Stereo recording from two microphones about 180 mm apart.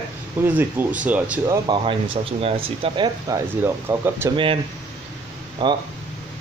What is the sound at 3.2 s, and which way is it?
Speech, 15° right (ahead or behind).